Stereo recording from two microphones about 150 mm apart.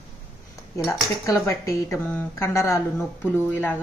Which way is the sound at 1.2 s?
20° left (ahead or behind).